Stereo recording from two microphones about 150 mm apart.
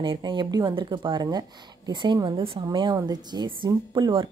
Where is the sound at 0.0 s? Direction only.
35° right (ahead or behind).